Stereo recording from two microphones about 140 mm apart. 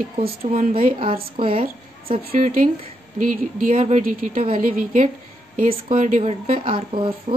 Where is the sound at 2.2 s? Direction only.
75° right (ahead or behind).